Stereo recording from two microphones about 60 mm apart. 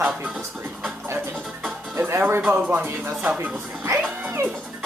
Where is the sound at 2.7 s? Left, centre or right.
Right.